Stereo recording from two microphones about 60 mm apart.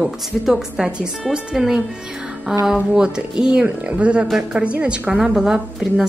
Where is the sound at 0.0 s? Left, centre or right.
Centre.